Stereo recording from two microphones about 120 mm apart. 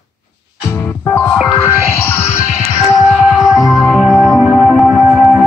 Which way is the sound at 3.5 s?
5° right (ahead or behind).